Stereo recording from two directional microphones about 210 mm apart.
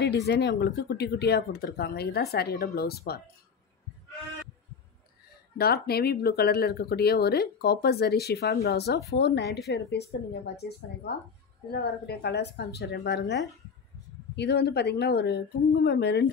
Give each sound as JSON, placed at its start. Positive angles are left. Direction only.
{"t": 0.0, "sound": "speech", "side_deg": 55}
{"t": 5.6, "sound": "speech", "side_deg": 50}